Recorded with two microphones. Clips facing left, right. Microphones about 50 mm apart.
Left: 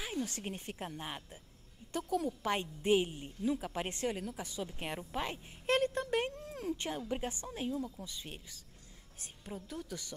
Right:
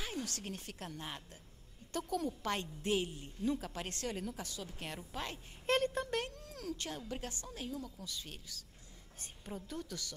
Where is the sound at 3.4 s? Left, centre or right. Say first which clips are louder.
Left 2 dB; centre.